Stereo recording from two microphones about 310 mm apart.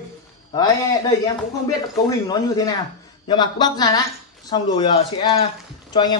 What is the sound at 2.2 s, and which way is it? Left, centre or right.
Speech, centre.